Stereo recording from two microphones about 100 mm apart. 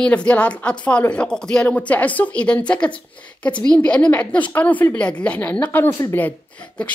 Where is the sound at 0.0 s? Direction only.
10° left (ahead or behind).